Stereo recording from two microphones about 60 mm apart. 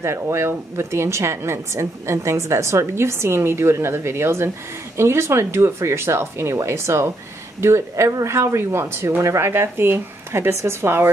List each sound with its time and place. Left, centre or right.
0.0 s speech: right